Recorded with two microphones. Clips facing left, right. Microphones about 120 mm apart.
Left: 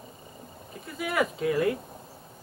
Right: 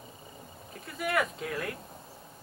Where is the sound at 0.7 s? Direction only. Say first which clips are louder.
Right 1 dB; centre (ahead or behind).